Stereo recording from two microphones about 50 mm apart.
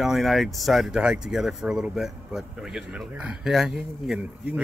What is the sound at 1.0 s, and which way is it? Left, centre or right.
Speech, centre.